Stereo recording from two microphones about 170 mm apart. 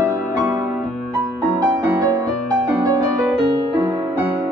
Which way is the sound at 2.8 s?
20° right (ahead or behind).